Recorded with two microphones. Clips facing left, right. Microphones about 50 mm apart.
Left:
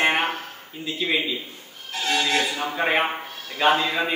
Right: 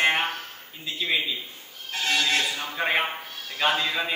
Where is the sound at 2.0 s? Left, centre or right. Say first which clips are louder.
Left 2 dB; left.